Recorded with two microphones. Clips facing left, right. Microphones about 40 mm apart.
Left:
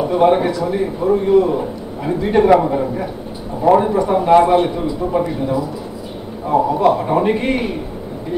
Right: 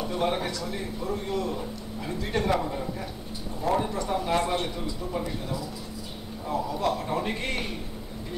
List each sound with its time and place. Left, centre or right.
0.0 s a man's voice: left